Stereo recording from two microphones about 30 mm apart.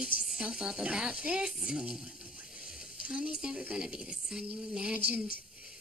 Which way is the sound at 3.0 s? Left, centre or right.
Right.